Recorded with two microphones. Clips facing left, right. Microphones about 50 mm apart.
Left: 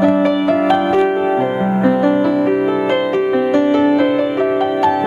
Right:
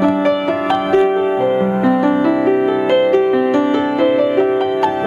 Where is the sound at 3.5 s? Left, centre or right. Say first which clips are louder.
Left 1 dB; centre.